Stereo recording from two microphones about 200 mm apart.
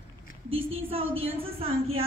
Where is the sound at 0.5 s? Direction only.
80° right.